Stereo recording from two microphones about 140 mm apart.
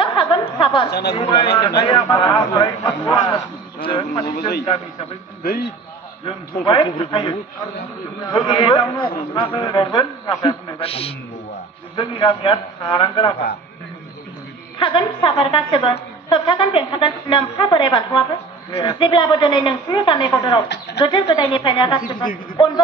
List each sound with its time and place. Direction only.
0.0 s a sound: 35° left (ahead or behind)
1.1 s speech: 45° left (ahead or behind)
1.6 s a woman's voice: 30° left (ahead or behind)
5.4 s a man's voice: 90° left
6.6 s a woman's voice: 40° left (ahead or behind)
10.8 s a woman's voice: 45° left (ahead or behind)
14.8 s a woman's voice: 35° left (ahead or behind)